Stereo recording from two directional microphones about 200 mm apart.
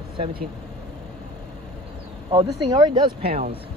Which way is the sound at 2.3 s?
20° right (ahead or behind).